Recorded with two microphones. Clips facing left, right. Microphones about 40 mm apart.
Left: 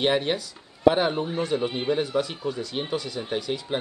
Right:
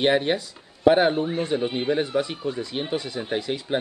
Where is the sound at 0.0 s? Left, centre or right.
Centre.